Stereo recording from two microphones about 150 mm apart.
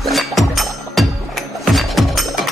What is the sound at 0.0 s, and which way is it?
Music, centre (ahead or behind).